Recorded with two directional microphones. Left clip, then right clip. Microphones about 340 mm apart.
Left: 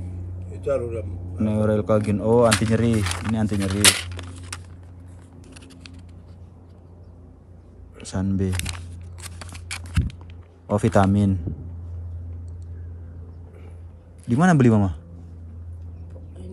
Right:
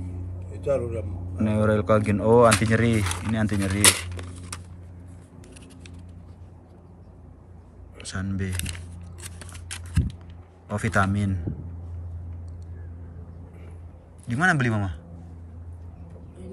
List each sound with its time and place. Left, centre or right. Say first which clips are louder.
0.5 s speech: left 1 dB; centre
3.5 s a sound: left 3 dB; centre
5.5 s typing: left 5 dB; centre
8.1 s speech: left 6 dB; centre
8.5 s speech: left 4 dB; centre
9.2 s scissors: left 4 dB; centre
10.7 s speech: left 5 dB; centre
14.2 s a man's voice: left 3 dB; centre